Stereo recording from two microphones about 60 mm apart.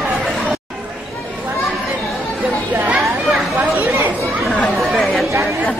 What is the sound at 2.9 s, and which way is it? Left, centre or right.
Chatter, right.